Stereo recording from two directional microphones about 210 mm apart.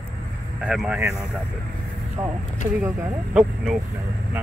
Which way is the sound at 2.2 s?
15° right (ahead or behind).